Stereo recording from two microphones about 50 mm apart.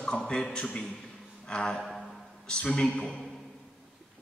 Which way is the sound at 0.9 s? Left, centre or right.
Centre.